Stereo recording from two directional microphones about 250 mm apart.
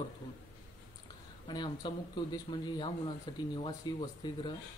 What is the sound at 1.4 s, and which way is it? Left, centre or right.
Speech, centre.